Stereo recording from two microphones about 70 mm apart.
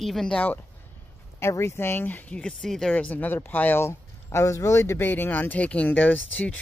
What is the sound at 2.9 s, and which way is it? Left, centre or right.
Speech, centre.